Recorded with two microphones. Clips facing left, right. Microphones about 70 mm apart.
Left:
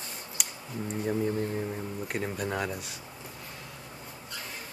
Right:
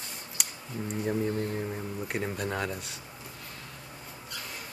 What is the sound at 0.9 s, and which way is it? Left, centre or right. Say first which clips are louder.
Speech: even; centre.